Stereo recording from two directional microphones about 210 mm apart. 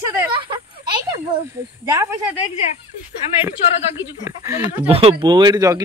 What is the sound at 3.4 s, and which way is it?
Speech, 10° right (ahead or behind).